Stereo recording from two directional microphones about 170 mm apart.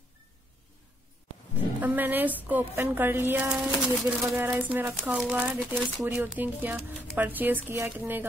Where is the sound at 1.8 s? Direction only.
10° right (ahead or behind).